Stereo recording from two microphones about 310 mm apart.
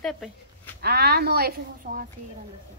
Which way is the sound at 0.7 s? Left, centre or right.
Right.